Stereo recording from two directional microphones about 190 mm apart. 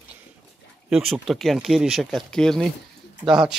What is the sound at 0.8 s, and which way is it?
Speech, centre (ahead or behind).